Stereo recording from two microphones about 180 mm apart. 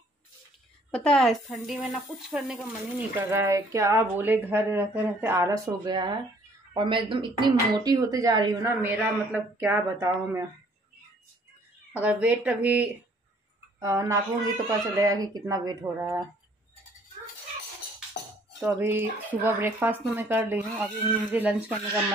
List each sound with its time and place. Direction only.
0.9 s speech: 5° left (ahead or behind); by 10.4 s 15° right (ahead or behind)
12.0 s speech: 5° right (ahead or behind)
18.6 s speech: 15° right (ahead or behind)